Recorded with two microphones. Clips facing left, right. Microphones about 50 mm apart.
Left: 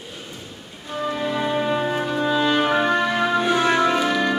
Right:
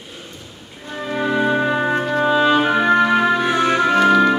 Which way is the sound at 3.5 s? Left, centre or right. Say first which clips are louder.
Right 3 dB; centre.